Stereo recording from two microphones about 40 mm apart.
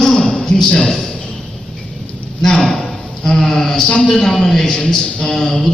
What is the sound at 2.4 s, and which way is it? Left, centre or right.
A man's voice, centre.